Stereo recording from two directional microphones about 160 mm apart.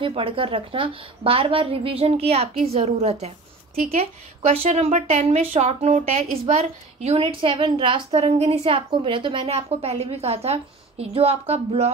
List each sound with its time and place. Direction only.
0.0 s a woman's voice: 35° right (ahead or behind)